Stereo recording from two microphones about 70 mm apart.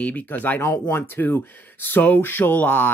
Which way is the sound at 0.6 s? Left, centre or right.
Left.